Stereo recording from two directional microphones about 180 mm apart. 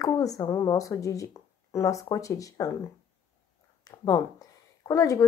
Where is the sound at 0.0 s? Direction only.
20° left (ahead or behind).